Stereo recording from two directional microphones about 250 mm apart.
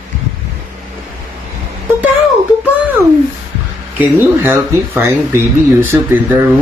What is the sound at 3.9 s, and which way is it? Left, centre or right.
Speech, centre.